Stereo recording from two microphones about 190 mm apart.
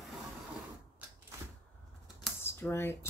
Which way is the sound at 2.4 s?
15° left (ahead or behind).